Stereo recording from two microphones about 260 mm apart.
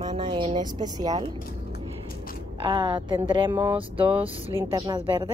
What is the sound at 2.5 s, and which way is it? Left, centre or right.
Speech, centre.